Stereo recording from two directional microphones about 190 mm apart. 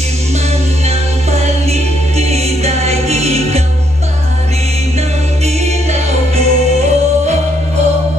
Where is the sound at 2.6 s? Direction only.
35° right (ahead or behind).